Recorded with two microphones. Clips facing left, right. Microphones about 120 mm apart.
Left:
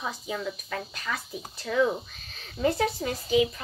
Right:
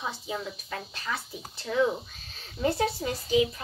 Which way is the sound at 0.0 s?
30° right (ahead or behind).